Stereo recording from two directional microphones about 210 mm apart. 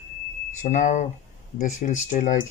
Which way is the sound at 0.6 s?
35° left (ahead or behind).